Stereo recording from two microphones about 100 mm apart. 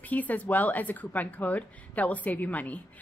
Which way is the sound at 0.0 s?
15° left (ahead or behind).